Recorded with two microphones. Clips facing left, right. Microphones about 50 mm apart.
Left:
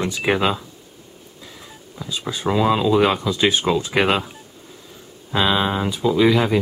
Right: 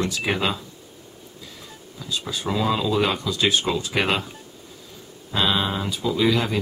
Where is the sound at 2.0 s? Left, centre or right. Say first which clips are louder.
Left 3 dB; centre.